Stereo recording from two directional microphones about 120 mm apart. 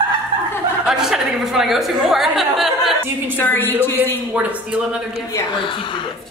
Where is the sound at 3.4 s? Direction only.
15° left (ahead or behind).